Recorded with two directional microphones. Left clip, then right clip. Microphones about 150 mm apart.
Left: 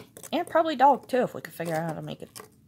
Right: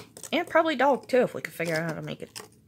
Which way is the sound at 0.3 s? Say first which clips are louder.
Right 1 dB; 10° right (ahead or behind).